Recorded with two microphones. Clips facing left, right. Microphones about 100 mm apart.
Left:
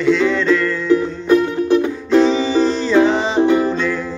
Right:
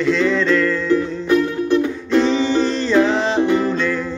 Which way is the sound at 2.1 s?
Centre (ahead or behind).